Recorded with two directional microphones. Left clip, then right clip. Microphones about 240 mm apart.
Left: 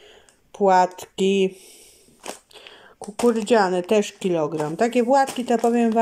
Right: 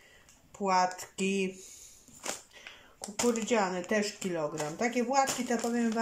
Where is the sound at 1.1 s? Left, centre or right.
Left.